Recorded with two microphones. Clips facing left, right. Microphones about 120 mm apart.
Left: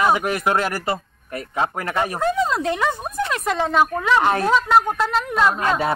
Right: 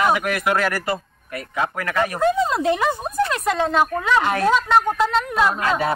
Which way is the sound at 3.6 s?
5° left (ahead or behind).